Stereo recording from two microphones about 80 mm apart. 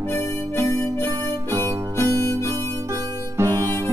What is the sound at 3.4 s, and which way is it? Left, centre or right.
Harmonica, right.